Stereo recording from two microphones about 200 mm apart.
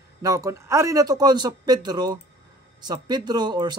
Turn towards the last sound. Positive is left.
turn(degrees=-20)  # may be behind; listen again after turning